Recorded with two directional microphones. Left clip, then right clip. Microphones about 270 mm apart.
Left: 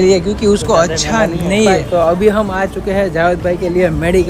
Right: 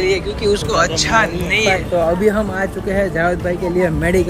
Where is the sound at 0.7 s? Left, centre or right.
Centre.